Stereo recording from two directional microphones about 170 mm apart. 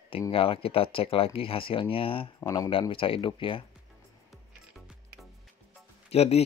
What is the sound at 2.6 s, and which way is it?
Speech, 30° left (ahead or behind).